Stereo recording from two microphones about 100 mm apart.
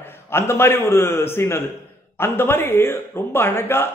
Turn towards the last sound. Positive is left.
turn(degrees=25)  # may be behind; listen again after turning